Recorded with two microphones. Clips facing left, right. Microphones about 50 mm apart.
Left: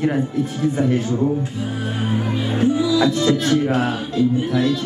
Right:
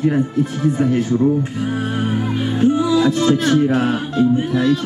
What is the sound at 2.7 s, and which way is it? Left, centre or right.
Music, right.